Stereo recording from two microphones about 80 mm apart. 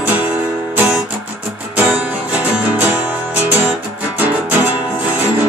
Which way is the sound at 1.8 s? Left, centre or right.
Centre.